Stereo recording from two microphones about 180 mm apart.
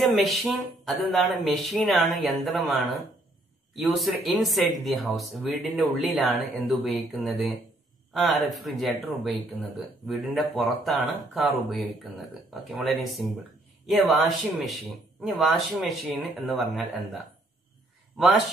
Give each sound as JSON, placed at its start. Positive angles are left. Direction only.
{"t": 0.0, "sound": "speech", "side_deg": 0}